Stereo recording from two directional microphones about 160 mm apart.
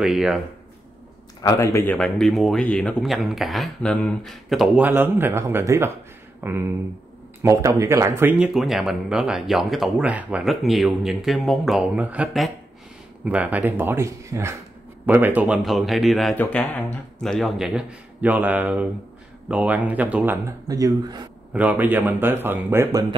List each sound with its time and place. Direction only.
0.0 s speech: centre (ahead or behind)
1.4 s a man's voice: 20° left (ahead or behind)
2.0 s speech: 5° left (ahead or behind)
4.8 s speech: 15° right (ahead or behind)
8.5 s speech: centre (ahead or behind); by 21.2 s 25° right (ahead or behind)
21.5 s speech: 10° right (ahead or behind)